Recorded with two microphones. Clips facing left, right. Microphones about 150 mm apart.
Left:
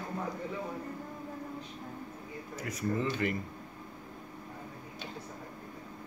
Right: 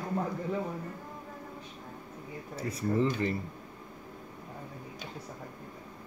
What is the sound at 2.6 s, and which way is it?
Speech, 30° right (ahead or behind).